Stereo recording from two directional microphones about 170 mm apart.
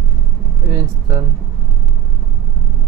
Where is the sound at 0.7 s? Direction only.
25° right (ahead or behind).